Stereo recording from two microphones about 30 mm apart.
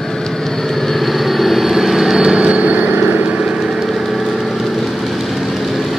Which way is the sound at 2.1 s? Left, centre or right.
Right.